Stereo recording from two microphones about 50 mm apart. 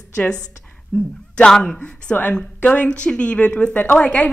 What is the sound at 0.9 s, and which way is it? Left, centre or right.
A woman's voice, centre.